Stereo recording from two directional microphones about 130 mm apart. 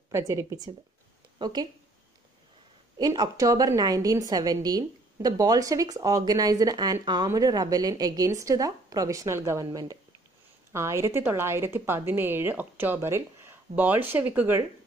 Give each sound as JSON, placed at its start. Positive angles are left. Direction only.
{"t": 0.1, "sound": "a woman's voice", "side_deg": -25}
{"t": 3.0, "sound": "a woman's voice", "side_deg": -30}